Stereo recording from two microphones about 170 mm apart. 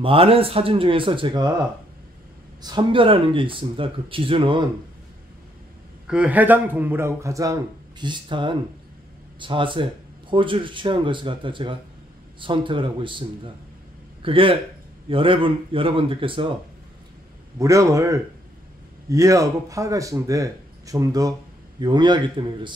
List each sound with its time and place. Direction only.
0.0 s speech: 35° right (ahead or behind)
2.6 s speech: 25° right (ahead or behind)
6.0 s a man's voice: 5° right (ahead or behind); by 13.2 s 30° right (ahead or behind)
14.2 s speech: 30° right (ahead or behind)
17.6 s a man's voice: 20° right (ahead or behind)